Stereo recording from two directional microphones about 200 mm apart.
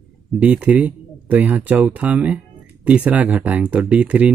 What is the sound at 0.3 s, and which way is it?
Speech, 5° right (ahead or behind).